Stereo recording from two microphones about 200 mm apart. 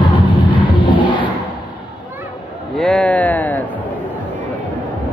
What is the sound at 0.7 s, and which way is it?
Crowd, 25° left (ahead or behind).